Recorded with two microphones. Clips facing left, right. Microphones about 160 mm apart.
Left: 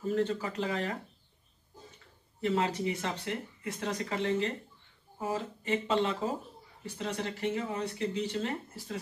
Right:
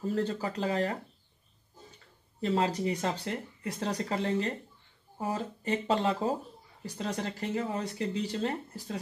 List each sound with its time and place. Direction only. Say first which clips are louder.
0.0 s speech: even; 35° right (ahead or behind)
2.4 s speech: right 1 dB; 35° right (ahead or behind)